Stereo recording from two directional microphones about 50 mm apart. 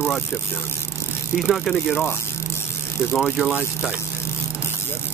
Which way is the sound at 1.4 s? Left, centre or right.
Centre.